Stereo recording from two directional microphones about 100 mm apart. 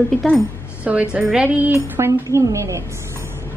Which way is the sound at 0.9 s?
10° right (ahead or behind).